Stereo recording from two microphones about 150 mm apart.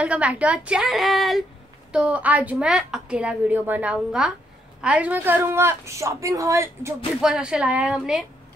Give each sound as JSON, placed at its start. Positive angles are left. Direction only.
{"t": 0.0, "sound": "a woman's voice", "side_deg": -10}
{"t": 7.2, "sound": "a woman's voice", "side_deg": -5}